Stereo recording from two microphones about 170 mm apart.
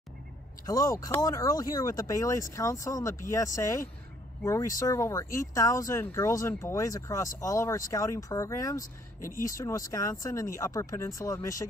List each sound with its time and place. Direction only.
0.7 s speech: 20° left (ahead or behind)